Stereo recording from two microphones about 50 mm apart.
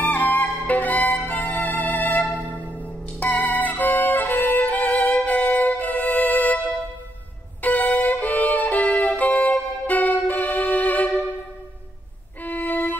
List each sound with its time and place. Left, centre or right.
0.0 s music: left
4.4 s violin: left
7.6 s violin: left
12.4 s violin: left